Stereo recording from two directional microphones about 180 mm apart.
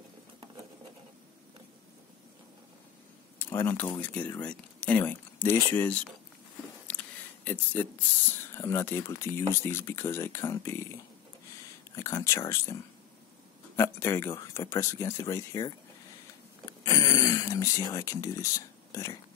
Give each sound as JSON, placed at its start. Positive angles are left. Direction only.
{"t": 3.3, "sound": "speech", "side_deg": 15}
{"t": 7.4, "sound": "speech", "side_deg": 10}
{"t": 11.9, "sound": "speech", "side_deg": 15}
{"t": 13.7, "sound": "speech", "side_deg": 15}
{"t": 16.8, "sound": "speech", "side_deg": 20}